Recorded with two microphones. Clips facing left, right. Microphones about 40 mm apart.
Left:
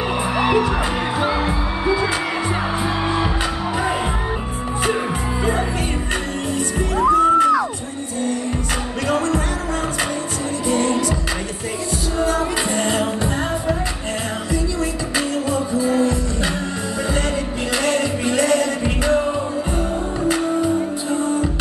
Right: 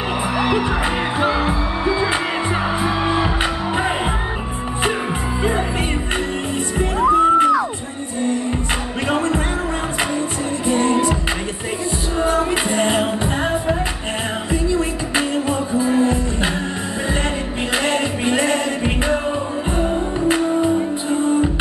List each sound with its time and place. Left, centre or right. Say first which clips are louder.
0.4 s music: left 2 dB; centre
7.0 s music: even; right
9.1 s music: even; right
10.7 s music: right 2 dB; right
12.2 s music: right 2 dB; right
15.1 s music: right 2 dB; right
17.8 s music: left 1 dB; right